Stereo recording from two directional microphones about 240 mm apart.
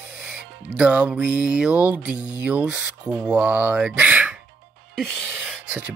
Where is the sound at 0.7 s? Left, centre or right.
Centre.